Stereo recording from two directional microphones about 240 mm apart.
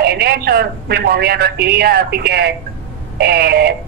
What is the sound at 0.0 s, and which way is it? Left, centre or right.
A man's voice, right.